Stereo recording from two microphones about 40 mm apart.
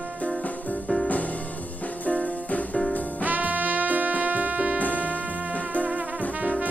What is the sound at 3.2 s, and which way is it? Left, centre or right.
Music, right.